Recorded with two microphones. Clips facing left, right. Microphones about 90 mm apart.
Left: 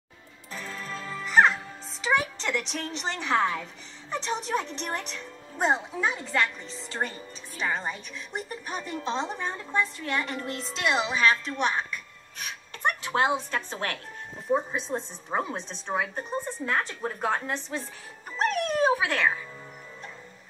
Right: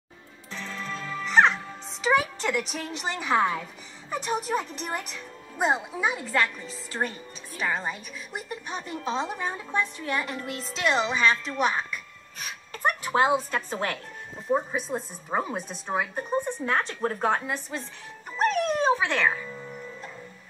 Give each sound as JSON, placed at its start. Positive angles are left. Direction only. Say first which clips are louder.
{"t": 1.2, "sound": "music", "louder": "even", "side_deg": 5}
{"t": 2.4, "sound": "a woman's voice", "louder": "right 2 dB", "side_deg": -5}
{"t": 17.5, "sound": "speech", "louder": "even", "side_deg": -5}
{"t": 18.4, "sound": "dog", "louder": "right 1 dB", "side_deg": 0}